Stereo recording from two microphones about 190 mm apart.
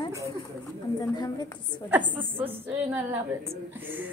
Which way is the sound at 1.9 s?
10° right (ahead or behind).